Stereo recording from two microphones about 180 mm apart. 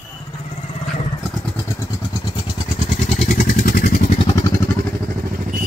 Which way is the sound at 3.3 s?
45° left (ahead or behind).